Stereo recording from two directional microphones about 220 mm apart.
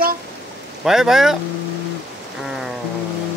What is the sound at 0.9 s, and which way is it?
Speech, centre (ahead or behind).